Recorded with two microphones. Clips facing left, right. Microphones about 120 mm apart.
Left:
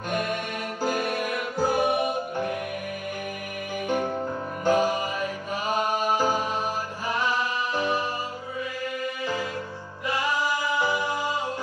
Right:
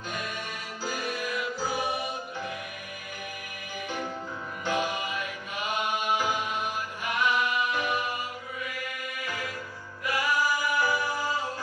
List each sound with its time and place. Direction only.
0.1 s music: 55° left (ahead or behind)
3.8 s music: 50° left (ahead or behind)
4.6 s mantra: 40° left (ahead or behind)
7.1 s music: 35° left (ahead or behind)
9.0 s music: 30° left (ahead or behind)
10.0 s singing: 25° left (ahead or behind)